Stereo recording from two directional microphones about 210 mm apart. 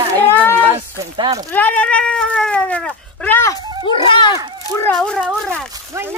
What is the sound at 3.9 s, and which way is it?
Speech, 20° left (ahead or behind).